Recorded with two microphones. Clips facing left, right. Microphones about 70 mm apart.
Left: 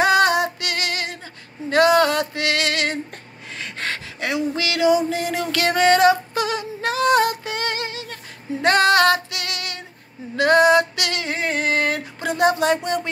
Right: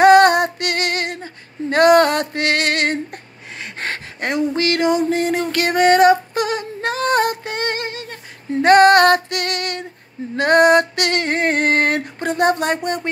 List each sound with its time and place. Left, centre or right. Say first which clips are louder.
0.0 s female singing: right 6 dB; right
1.9 s music: right 4 dB; right
3.1 s a sound: right 2 dB; right